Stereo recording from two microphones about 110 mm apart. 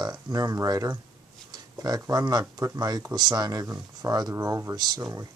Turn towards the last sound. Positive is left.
turn(degrees=-30)  # may be behind; listen again after turning